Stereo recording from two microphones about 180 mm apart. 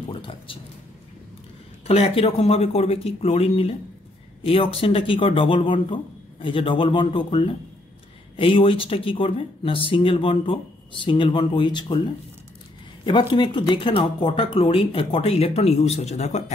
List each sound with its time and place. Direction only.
0.1 s music: 30° left (ahead or behind)
1.9 s speech: 35° left (ahead or behind)
13.0 s speech: 25° left (ahead or behind)